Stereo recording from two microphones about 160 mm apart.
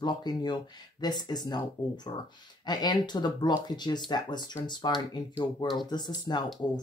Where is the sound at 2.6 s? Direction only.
25° left (ahead or behind).